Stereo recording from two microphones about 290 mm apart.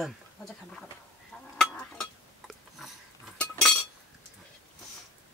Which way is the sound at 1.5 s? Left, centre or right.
Centre.